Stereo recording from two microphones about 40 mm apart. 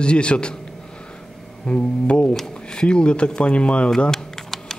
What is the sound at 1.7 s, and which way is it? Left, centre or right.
Speech, left.